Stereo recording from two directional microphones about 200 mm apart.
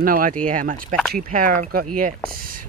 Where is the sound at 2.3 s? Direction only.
45° right (ahead or behind).